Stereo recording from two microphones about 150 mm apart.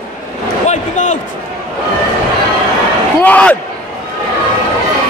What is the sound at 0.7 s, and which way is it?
Basketball bounce, 55° left (ahead or behind).